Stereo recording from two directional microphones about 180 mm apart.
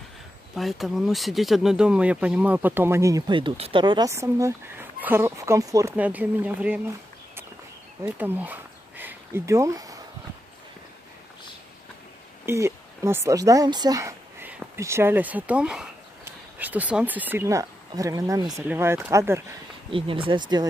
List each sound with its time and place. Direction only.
0.6 s speech: centre (ahead or behind); by 5.9 s 20° right (ahead or behind)
5.9 s speech: 10° right (ahead or behind)
8.0 s speech: 10° right (ahead or behind)
12.4 s speech: 15° right (ahead or behind)
19.9 s speech: 30° right (ahead or behind)